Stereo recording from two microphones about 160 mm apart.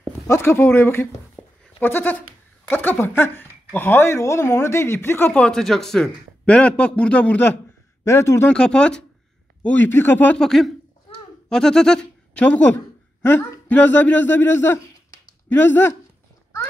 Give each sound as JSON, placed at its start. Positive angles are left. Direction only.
{"t": 0.3, "sound": "speech", "side_deg": 15}
{"t": 1.4, "sound": "bleat", "side_deg": -5}
{"t": 1.8, "sound": "speech", "side_deg": 10}
{"t": 8.5, "sound": "speech", "side_deg": 5}